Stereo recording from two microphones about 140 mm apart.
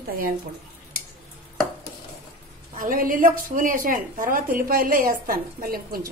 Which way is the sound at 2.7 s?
80° right.